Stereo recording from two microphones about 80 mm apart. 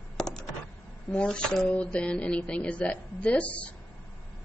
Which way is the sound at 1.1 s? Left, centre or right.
Centre.